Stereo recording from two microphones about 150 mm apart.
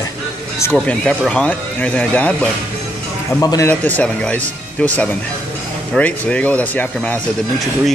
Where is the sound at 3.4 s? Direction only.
25° left (ahead or behind).